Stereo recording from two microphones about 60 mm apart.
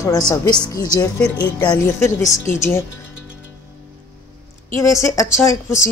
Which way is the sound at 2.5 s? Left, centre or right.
Left.